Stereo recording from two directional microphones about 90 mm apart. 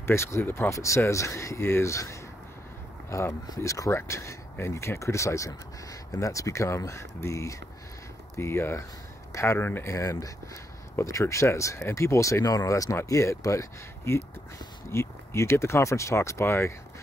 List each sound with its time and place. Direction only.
0.0 s speech: 30° left (ahead or behind)